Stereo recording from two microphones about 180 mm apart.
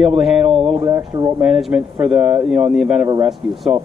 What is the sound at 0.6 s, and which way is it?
Speech, 35° right (ahead or behind).